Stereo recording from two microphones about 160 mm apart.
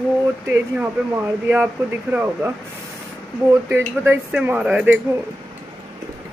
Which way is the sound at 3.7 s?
15° right (ahead or behind).